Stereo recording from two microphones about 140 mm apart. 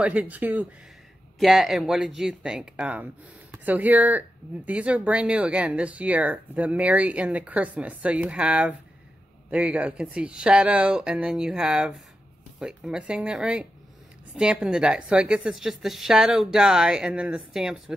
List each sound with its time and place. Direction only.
0.0 s a woman's voice: 10° right (ahead or behind)